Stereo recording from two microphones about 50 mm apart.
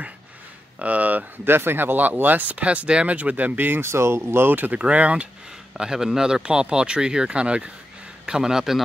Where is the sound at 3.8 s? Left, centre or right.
Right.